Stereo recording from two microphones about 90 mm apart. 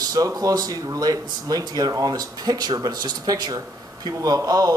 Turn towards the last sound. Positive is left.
turn(degrees=-45)  # may be behind; listen again after turning